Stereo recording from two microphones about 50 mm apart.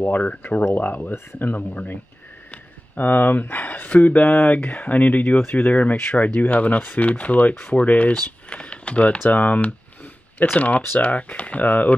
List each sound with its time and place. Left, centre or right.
0.0 s speech: left
3.0 s speech: left